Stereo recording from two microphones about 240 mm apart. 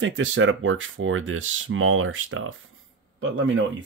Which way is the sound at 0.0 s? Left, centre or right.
Right.